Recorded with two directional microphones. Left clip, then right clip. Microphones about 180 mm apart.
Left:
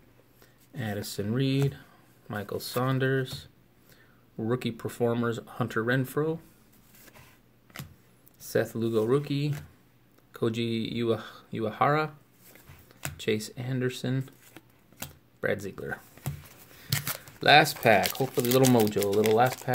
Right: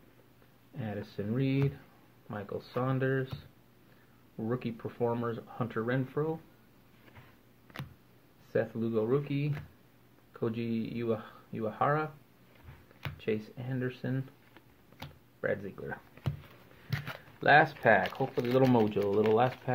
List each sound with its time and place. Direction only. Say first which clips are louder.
0.7 s speech: left 5 dB; 30° left (ahead or behind)
4.4 s speech: left 5 dB; 30° left (ahead or behind)
8.5 s speech: left 4 dB; 30° left (ahead or behind)
13.2 s speech: left 5 dB; 35° left (ahead or behind)
15.4 s speech: left 4 dB; 35° left (ahead or behind)
16.9 s a sound: left 7 dB; 30° left (ahead or behind)
18.0 s speech: left 4 dB; 20° left (ahead or behind)